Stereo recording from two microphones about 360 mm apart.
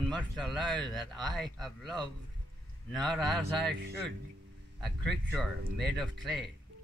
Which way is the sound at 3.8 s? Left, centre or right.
Right.